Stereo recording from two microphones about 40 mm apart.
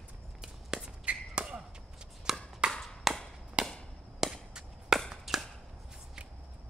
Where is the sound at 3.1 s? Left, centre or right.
Centre.